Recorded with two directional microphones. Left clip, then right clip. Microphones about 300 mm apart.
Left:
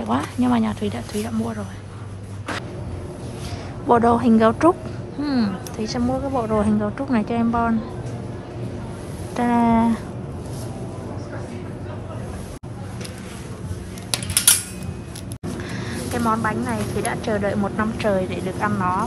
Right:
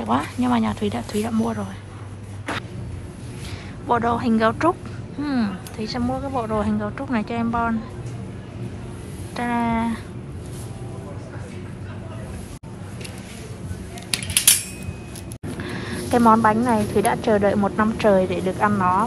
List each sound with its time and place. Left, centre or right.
0.0 s speech: centre
3.8 s speech: centre
9.3 s speech: centre
15.6 s speech: centre